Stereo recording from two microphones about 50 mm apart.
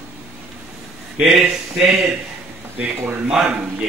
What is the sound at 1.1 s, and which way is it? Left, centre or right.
Speech, centre.